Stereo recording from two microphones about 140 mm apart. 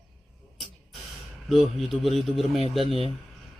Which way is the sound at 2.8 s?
45° right (ahead or behind).